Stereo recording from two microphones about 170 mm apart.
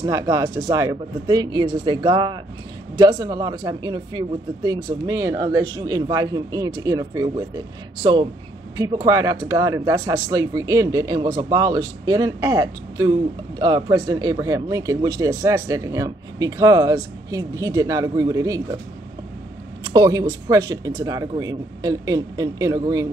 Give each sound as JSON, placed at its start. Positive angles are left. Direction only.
{"t": 0.0, "sound": "speech", "side_deg": -20}
{"t": 19.8, "sound": "speech", "side_deg": -25}